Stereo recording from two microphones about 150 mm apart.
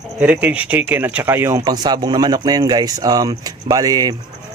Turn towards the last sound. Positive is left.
turn(degrees=-25)  # may be behind; listen again after turning